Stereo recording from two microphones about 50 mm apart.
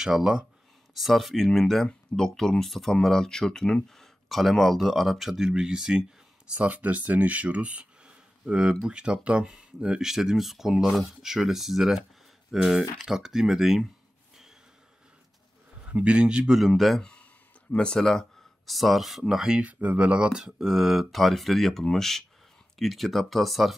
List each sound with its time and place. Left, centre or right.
0.0 s speech: centre
0.9 s speech: centre
4.0 s speech: centre
6.7 s speech: right; by 13.8 s centre
15.8 s a man's voice: right
16.5 s speech: centre
17.0 s a sound: left
18.7 s speech: centre
19.2 s speech: centre
19.6 s speech: right
20.3 s speech: centre